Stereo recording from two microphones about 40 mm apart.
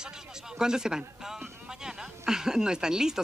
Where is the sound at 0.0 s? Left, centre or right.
Centre.